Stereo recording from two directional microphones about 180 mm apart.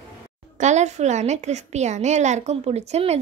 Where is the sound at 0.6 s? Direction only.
40° right (ahead or behind).